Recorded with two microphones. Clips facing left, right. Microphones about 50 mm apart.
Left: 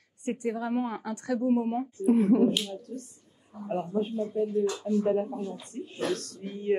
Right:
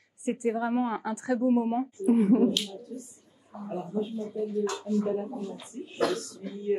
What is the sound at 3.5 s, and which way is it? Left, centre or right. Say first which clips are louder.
Speech: right 1 dB; right.